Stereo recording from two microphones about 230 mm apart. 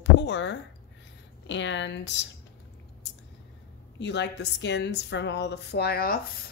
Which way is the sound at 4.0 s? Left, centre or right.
Left.